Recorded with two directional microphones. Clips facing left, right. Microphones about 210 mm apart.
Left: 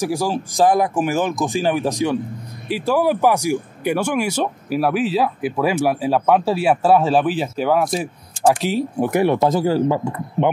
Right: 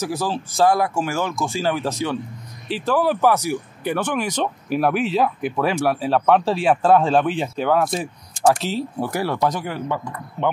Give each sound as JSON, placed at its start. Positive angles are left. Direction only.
{"t": 0.0, "sound": "speech", "side_deg": 10}